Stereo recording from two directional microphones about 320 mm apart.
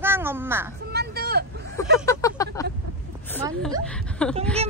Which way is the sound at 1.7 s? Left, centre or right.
Centre.